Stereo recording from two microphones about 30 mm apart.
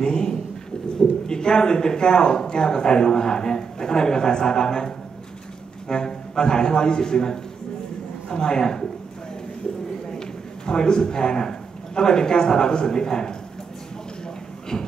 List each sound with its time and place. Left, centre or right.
0.0 s a man's voice: left
10.0 s a man's voice: left
14.7 s a sound: left